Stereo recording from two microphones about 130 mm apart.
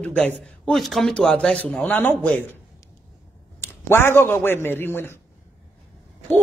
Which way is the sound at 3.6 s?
20° left (ahead or behind).